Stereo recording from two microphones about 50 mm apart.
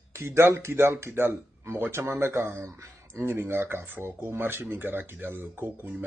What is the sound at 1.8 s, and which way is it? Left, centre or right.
Speech, right.